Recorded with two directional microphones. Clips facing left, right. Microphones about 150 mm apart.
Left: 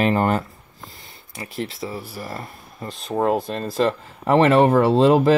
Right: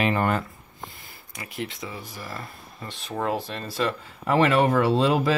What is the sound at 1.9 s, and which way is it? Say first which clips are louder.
Speech: left 6 dB; 5° left (ahead or behind).